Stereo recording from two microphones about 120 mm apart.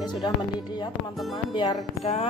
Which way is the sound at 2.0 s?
60° left (ahead or behind).